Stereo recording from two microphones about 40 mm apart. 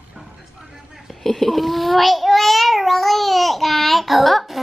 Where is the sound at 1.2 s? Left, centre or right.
Centre.